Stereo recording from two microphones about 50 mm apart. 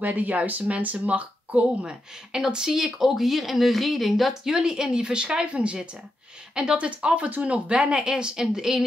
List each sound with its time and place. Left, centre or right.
0.0 s speech: right
1.5 s speech: centre
7.9 s speech: centre